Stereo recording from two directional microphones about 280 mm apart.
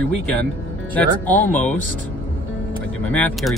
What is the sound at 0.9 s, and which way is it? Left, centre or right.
Speech, centre.